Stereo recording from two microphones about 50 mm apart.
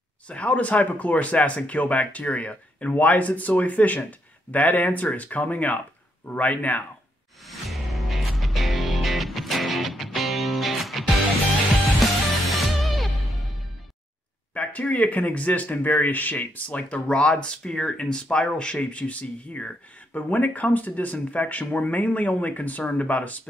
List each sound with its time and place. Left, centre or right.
0.3 s speech: left
7.4 s music: centre
14.5 s speech: left